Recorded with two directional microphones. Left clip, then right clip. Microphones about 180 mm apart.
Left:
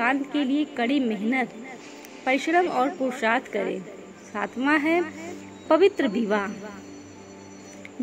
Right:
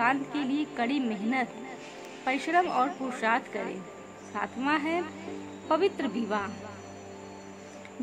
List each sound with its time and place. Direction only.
0.0 s speech: 5° left (ahead or behind)